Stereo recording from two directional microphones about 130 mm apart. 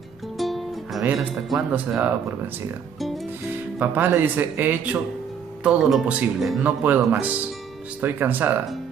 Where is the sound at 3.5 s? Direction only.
15° right (ahead or behind).